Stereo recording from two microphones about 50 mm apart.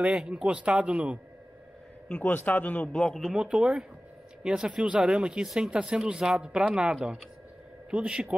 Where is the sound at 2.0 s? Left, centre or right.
Left.